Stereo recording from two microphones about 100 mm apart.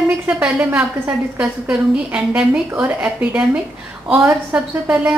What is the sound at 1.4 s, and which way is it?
A woman's voice, 10° right (ahead or behind).